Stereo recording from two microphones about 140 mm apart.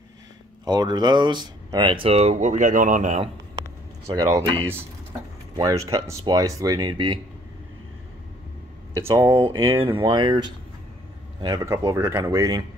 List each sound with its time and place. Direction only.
0.7 s speech: 30° right (ahead or behind); by 3.2 s 65° right (ahead or behind)
4.1 s speech: 30° right (ahead or behind)
5.6 s speech: 25° right (ahead or behind)
8.9 s speech: 20° right (ahead or behind)
9.4 s speech: 40° right (ahead or behind)
11.4 s speech: 20° right (ahead or behind)